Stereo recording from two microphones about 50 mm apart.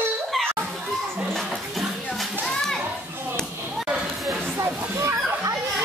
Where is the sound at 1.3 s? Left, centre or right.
Centre.